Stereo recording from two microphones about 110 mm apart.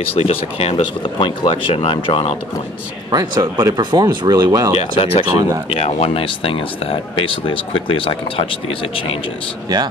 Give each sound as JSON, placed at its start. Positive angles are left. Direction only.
{"t": 0.1, "sound": "speech", "side_deg": 65}
{"t": 1.0, "sound": "speech", "side_deg": 45}
{"t": 3.1, "sound": "speech", "side_deg": -35}
{"t": 4.7, "sound": "speech", "side_deg": 65}